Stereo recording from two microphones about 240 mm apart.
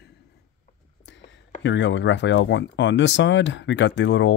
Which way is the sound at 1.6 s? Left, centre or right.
Left.